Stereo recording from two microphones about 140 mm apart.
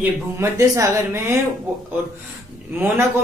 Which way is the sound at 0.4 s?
20° right (ahead or behind).